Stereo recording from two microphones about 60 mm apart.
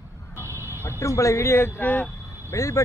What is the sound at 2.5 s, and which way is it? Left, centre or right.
Speech, left.